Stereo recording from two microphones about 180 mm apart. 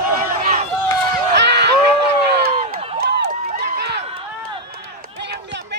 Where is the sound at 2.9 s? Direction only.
70° right (ahead or behind).